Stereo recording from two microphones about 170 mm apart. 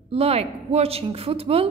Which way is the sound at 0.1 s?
35° right (ahead or behind).